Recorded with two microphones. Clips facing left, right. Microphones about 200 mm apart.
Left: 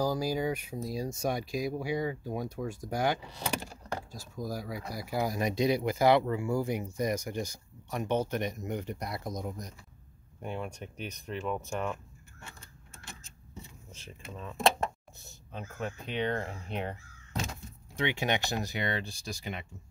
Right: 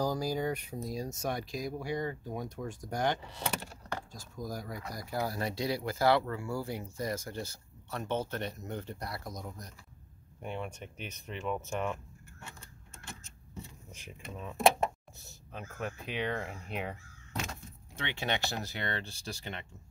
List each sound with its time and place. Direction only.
0.0 s speech: 10° left (ahead or behind)
10.4 s speech: centre (ahead or behind)
14.2 s speech: 10° right (ahead or behind)
17.5 s speech: 15° left (ahead or behind)